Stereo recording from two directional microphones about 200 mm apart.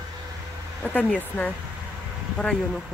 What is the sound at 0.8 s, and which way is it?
Speech, 5° left (ahead or behind).